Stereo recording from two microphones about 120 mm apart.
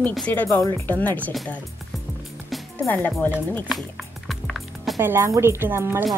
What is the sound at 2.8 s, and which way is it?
Speech, 15° left (ahead or behind).